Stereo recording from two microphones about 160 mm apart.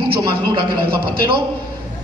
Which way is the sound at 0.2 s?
30° right (ahead or behind).